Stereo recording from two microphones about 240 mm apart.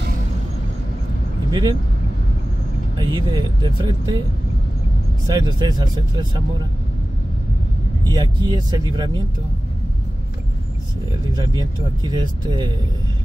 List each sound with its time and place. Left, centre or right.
1.5 s speech: centre
3.0 s speech: centre
5.2 s speech: centre
8.1 s speech: centre
11.3 s speech: centre